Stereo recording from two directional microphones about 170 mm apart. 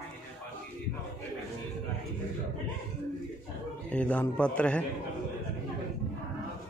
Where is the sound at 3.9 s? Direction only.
10° left (ahead or behind).